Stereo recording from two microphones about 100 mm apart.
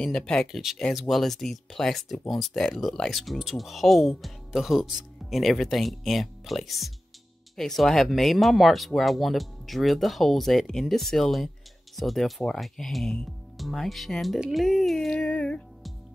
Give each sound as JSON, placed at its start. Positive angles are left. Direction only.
{"t": 0.0, "sound": "speech", "side_deg": 5}
{"t": 0.6, "sound": "speech", "side_deg": -5}